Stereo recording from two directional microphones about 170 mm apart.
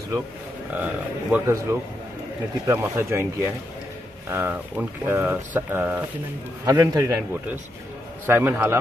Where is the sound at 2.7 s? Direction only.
15° right (ahead or behind).